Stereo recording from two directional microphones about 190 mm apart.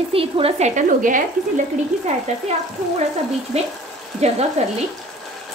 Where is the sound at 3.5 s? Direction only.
35° right (ahead or behind).